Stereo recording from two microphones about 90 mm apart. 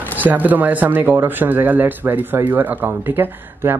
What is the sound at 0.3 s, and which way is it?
Speech, 20° right (ahead or behind).